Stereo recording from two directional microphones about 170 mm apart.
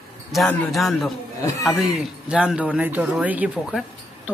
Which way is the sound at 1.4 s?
20° left (ahead or behind).